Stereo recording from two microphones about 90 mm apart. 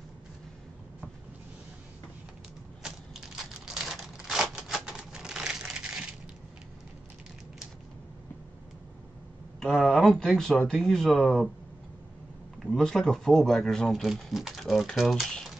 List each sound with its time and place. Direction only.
2.8 s crumpling: 5° right (ahead or behind)
9.6 s speech: 5° left (ahead or behind)
12.6 s speech: 5° left (ahead or behind)